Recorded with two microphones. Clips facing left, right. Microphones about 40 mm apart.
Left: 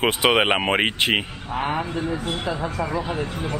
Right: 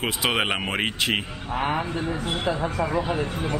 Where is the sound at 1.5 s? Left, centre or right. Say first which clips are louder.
Left 1 dB; centre.